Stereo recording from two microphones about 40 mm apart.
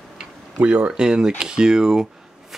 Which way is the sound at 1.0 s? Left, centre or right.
Right.